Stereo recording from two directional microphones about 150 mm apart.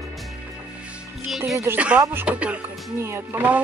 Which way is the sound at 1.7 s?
10° right (ahead or behind).